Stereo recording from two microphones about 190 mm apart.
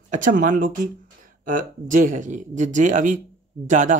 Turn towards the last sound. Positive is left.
turn(degrees=-40)  # may be behind; listen again after turning